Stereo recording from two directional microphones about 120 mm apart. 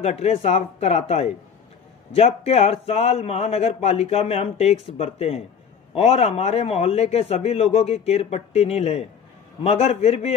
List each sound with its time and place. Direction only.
0.0 s a man's voice: 60° left (ahead or behind)